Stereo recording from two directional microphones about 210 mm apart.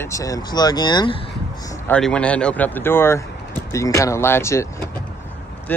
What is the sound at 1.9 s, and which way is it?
Speech, 5° left (ahead or behind).